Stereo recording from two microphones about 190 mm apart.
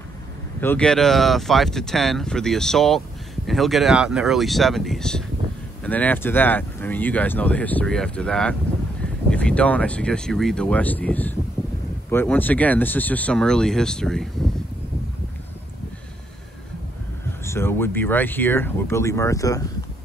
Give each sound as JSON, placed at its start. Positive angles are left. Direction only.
{"t": 0.6, "sound": "speech", "side_deg": 5}
{"t": 17.5, "sound": "speech", "side_deg": 10}